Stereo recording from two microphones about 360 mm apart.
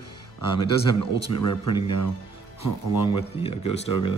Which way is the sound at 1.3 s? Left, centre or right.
Centre.